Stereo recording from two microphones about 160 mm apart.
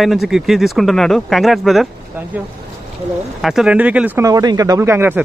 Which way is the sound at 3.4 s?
Centre (ahead or behind).